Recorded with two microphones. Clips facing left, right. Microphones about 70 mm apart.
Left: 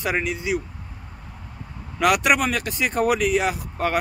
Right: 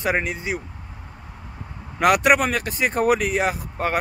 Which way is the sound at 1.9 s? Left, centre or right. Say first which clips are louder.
Right 2 dB; right.